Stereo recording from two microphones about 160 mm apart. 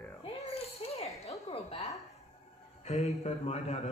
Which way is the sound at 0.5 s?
40° left (ahead or behind).